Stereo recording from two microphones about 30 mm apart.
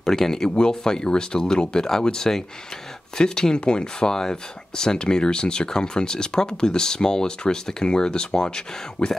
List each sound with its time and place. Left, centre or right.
0.0 s speech: centre